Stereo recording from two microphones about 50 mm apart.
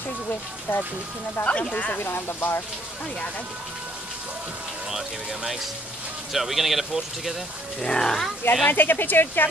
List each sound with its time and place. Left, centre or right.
0.3 s speech: left
1.4 s speech: left
2.0 s speech: left
4.9 s speech: centre
7.8 s speech: centre
8.6 s speech: left